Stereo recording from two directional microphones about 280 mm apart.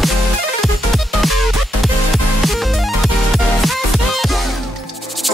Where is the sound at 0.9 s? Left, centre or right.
Centre.